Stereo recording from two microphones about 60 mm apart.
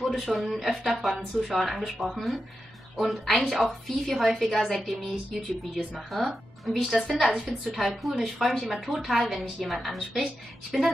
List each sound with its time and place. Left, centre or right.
0.0 s a woman's voice: centre